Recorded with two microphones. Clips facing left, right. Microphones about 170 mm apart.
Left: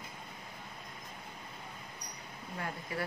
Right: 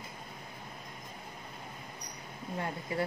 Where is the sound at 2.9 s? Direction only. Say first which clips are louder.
Right 5 dB; 25° right (ahead or behind).